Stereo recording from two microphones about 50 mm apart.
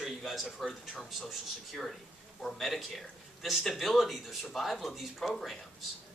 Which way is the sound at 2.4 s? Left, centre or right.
Centre.